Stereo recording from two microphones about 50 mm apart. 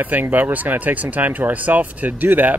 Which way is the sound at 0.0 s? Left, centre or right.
Right.